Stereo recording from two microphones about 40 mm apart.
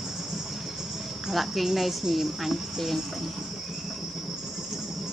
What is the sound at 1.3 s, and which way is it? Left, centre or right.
A woman's voice, centre.